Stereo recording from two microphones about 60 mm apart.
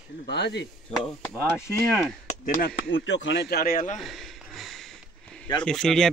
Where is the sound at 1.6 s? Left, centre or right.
Left.